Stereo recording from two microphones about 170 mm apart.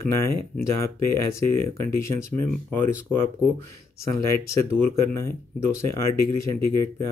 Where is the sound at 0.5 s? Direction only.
15° left (ahead or behind).